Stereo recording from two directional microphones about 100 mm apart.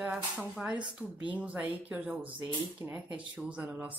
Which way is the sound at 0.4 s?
10° right (ahead or behind).